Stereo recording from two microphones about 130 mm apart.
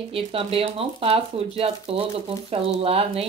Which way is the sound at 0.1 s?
45° right (ahead or behind).